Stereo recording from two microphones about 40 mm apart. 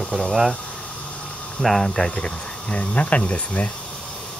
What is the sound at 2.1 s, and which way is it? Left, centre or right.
Speech, left.